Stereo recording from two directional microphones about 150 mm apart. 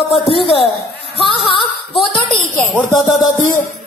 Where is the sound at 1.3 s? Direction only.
35° left (ahead or behind).